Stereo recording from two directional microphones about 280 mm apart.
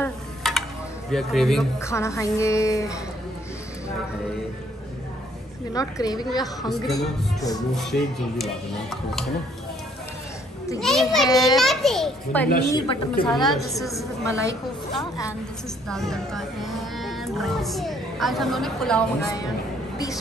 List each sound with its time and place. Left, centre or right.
0.0 s music: centre
1.1 s speech: centre
5.7 s speech: centre
7.7 s a child's voice: centre
10.8 s a child's voice: centre
11.2 s speech: centre
11.5 s a child's voice: centre
12.6 s speech: centre
13.3 s a child's voice: centre
13.7 s speech: centre
15.9 s speech: centre